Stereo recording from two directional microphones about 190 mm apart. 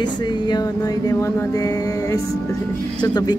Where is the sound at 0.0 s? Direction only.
20° left (ahead or behind).